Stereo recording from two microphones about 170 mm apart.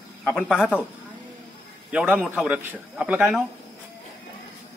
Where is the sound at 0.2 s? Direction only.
5° left (ahead or behind).